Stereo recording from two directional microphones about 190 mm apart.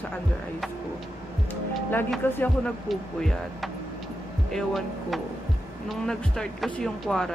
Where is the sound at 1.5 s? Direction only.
10° left (ahead or behind).